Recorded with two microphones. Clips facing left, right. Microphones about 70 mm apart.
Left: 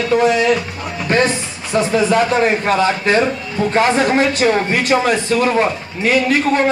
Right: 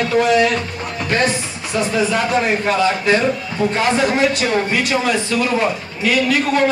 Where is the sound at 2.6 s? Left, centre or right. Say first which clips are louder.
Left 1 dB; left.